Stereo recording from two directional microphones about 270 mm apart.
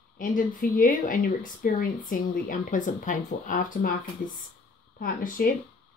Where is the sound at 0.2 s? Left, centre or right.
Left.